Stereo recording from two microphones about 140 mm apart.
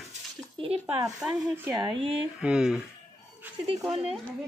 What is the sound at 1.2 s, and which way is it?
Speech, 10° right (ahead or behind).